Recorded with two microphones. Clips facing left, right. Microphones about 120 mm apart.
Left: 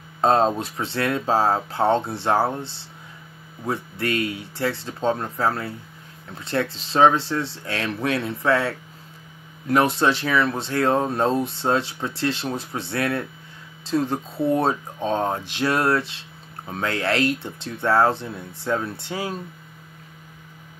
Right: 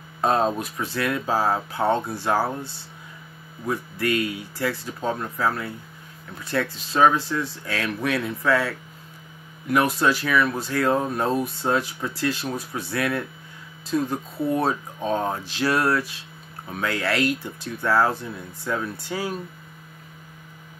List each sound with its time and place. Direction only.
0.2 s speech: 30° left (ahead or behind)